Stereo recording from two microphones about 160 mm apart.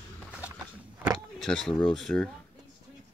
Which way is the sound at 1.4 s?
5° left (ahead or behind).